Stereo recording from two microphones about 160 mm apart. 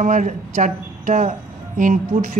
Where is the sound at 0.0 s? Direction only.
55° right (ahead or behind).